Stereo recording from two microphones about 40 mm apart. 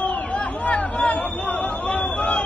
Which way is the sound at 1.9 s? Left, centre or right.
Left.